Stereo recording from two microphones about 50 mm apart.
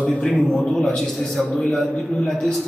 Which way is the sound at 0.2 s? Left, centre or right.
Centre.